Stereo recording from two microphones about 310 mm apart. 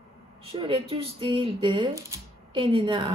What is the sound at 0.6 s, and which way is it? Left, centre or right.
Speech, centre.